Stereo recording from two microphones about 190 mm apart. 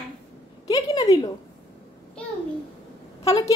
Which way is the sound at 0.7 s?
20° left (ahead or behind).